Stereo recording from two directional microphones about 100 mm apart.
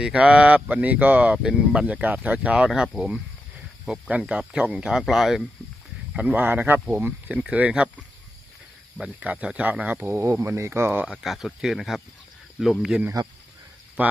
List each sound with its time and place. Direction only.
0.0 s speech: 10° right (ahead or behind)
6.1 s speech: 15° right (ahead or behind)
9.0 s speech: 15° right (ahead or behind)
11.1 s speech: centre (ahead or behind)
13.2 s speech: 45° right (ahead or behind)
14.0 s speech: 15° right (ahead or behind)